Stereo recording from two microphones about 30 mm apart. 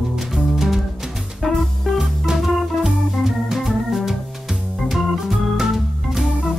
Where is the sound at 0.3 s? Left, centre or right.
Centre.